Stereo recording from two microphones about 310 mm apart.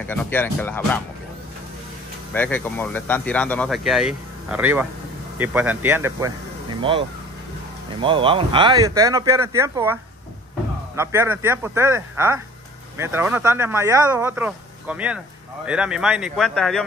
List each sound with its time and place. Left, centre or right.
0.0 s speech: centre
2.3 s speech: centre
11.0 s speech: centre